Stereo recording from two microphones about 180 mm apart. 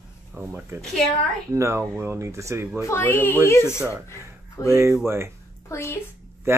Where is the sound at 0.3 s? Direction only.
10° right (ahead or behind).